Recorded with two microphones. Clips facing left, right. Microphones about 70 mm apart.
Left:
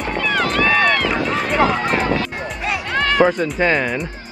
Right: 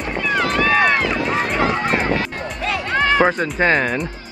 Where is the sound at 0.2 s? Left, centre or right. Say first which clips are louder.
Even; centre.